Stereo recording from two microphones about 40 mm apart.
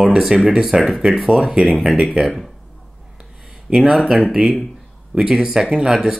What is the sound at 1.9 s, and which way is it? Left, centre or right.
Speech, right.